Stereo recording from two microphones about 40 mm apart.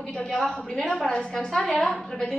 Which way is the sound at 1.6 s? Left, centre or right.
Left.